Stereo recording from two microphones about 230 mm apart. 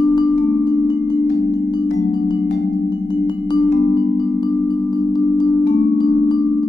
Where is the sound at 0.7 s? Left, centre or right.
Centre.